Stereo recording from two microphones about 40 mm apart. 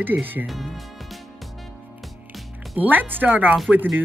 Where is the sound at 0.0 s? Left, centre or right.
Right.